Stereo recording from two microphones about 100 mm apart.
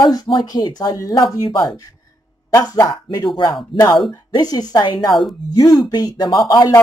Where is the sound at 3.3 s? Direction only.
50° left (ahead or behind).